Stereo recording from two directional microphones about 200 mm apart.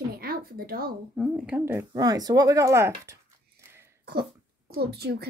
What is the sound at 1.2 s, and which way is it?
Speech, 5° right (ahead or behind).